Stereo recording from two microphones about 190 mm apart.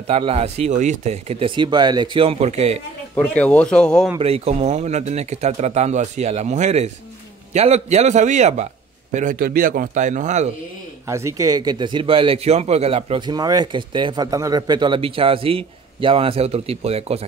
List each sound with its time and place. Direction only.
0.0 s speech: 30° right (ahead or behind)
3.2 s speech: 5° left (ahead or behind)
4.2 s a man's voice: 30° right (ahead or behind)
11.1 s speech: 15° right (ahead or behind); by 17.3 s 35° right (ahead or behind)